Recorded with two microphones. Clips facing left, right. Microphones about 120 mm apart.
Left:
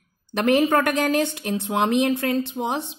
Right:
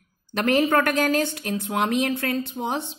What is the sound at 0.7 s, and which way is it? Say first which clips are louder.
Speech: left 1 dB; 15° left (ahead or behind).